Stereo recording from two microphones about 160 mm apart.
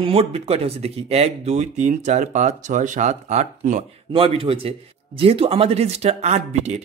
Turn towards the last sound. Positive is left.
turn(degrees=-45)  # may be behind; listen again after turning